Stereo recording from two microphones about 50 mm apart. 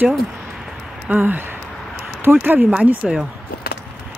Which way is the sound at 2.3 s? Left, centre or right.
Right.